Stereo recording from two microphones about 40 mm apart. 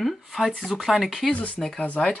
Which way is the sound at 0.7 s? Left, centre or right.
Centre.